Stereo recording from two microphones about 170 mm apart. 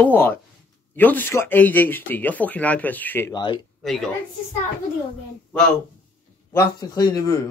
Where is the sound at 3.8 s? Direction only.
Centre (ahead or behind).